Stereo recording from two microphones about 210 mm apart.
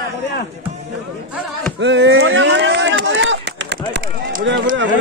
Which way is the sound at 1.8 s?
60° right (ahead or behind).